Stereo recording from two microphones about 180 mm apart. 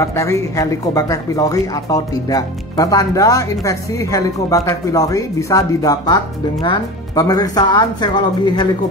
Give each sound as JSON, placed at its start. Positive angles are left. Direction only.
{"t": 0.0, "sound": "speech", "side_deg": 15}